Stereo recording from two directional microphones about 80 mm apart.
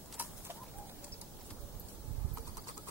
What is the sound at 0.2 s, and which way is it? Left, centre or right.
Bird, right.